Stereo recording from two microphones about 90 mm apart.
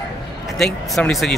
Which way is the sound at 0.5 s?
5° left (ahead or behind).